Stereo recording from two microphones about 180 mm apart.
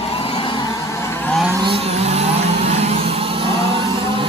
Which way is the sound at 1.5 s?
30° right (ahead or behind).